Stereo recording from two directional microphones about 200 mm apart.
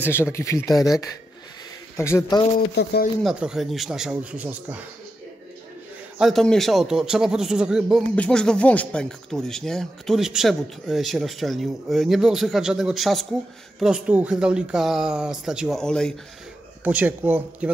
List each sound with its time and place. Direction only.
0.1 s speech: 15° left (ahead or behind)
2.7 s speech: 55° left (ahead or behind)
3.3 s speech: centre (ahead or behind)
6.1 s speech: centre (ahead or behind)
16.8 s speech: 10° right (ahead or behind)